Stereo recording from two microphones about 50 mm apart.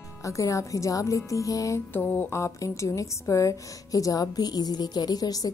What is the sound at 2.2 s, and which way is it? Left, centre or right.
A woman's voice, left.